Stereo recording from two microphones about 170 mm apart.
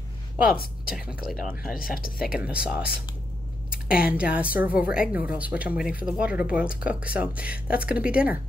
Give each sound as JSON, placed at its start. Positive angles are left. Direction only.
{"t": 0.9, "sound": "speech", "side_deg": -5}
{"t": 1.8, "sound": "speech", "side_deg": 55}
{"t": 2.2, "sound": "speech", "side_deg": -5}
{"t": 4.1, "sound": "speech", "side_deg": -5}